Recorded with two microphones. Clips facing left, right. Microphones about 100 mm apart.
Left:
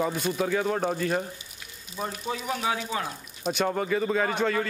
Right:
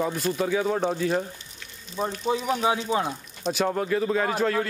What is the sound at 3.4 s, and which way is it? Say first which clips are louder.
Speech: right 1 dB; centre (ahead or behind).